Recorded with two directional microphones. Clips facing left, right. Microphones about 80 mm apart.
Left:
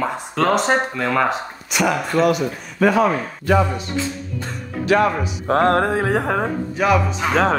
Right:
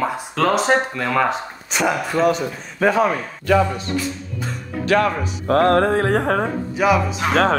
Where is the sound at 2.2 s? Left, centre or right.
Right.